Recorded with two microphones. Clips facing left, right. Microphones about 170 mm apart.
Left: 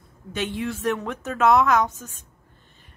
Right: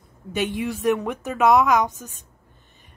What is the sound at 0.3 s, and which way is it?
A woman's voice, 15° right (ahead or behind).